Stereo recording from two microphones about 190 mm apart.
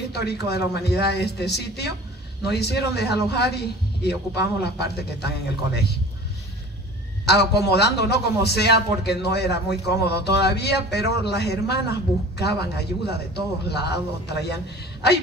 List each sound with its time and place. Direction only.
0.1 s a man's voice: 60° left (ahead or behind)
7.2 s a man's voice: 60° left (ahead or behind)